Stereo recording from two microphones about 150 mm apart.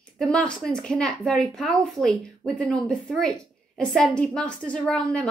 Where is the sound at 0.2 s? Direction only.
5° left (ahead or behind).